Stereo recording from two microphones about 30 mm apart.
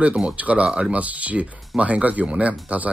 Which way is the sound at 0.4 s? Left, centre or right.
Right.